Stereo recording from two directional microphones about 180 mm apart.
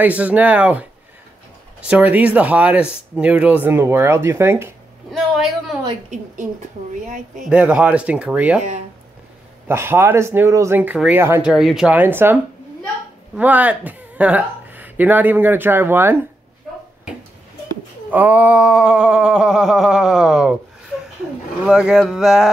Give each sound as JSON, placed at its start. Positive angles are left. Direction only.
{"t": 0.0, "sound": "speech", "side_deg": -10}
{"t": 1.9, "sound": "speech", "side_deg": -10}
{"t": 5.1, "sound": "a sound", "side_deg": 0}
{"t": 5.9, "sound": "a woman's voice", "side_deg": -45}
{"t": 7.4, "sound": "speech", "side_deg": -5}
{"t": 9.7, "sound": "speech", "side_deg": -15}
{"t": 11.5, "sound": "speech", "side_deg": 0}
{"t": 13.4, "sound": "a woman's voice", "side_deg": -10}
{"t": 18.1, "sound": "a sound", "side_deg": -10}
{"t": 21.6, "sound": "a sound", "side_deg": -5}